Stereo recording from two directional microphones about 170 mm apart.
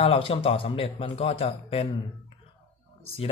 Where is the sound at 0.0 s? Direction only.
35° left (ahead or behind).